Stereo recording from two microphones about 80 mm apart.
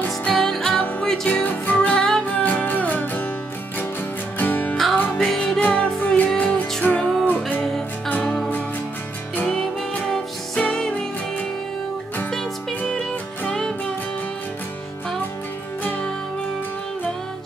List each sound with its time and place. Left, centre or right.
0.2 s music: centre
1.3 s music: centre
2.0 s music: centre
2.2 s music: centre
4.4 s music: left
5.2 s music: centre
9.5 s music: centre
12.3 s music: centre